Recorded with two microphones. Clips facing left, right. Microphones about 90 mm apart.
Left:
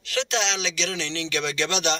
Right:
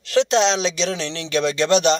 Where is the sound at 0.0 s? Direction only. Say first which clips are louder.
Right 9 dB; 35° right (ahead or behind).